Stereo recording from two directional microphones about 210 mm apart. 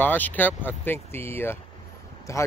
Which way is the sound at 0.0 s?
10° left (ahead or behind).